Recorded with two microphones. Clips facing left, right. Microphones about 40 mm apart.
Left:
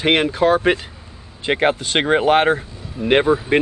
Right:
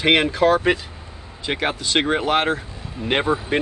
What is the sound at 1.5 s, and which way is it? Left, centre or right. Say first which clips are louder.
Speech: left 5 dB; left.